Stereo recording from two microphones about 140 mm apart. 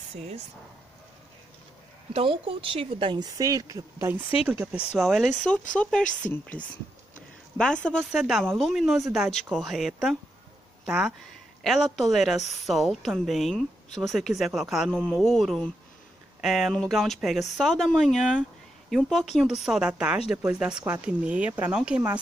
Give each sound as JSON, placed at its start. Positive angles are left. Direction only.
{"t": 2.1, "sound": "speech", "side_deg": -40}
{"t": 4.4, "sound": "speech", "side_deg": 45}
{"t": 4.9, "sound": "a woman's voice", "side_deg": 0}
{"t": 7.5, "sound": "a woman's voice", "side_deg": 5}
{"t": 8.1, "sound": "a woman's voice", "side_deg": -5}